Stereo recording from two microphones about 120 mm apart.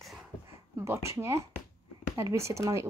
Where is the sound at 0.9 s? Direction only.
20° right (ahead or behind).